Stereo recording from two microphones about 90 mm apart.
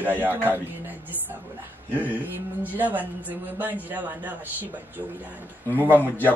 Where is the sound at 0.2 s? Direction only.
20° right (ahead or behind).